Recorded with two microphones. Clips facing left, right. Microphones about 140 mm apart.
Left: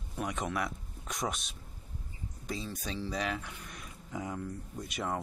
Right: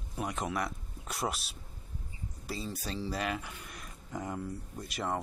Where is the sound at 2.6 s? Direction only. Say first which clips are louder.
Right 1 dB; 10° right (ahead or behind).